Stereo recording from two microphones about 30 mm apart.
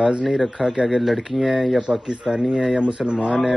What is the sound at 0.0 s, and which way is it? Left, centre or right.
Speech, right.